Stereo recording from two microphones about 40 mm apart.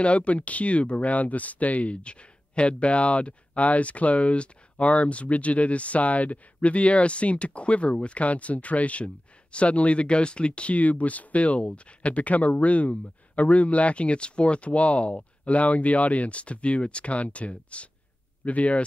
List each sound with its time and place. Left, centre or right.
0.0 s speech: left